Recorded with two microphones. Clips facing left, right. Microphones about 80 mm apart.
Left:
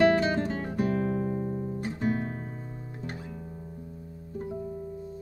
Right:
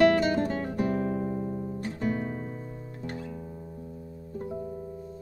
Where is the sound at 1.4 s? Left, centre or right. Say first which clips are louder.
Left 1 dB; left.